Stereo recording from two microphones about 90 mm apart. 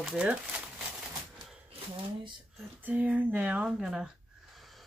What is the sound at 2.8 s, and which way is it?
Speech, 15° right (ahead or behind).